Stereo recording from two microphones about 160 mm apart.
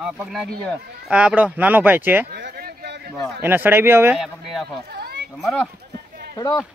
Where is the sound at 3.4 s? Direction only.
15° right (ahead or behind).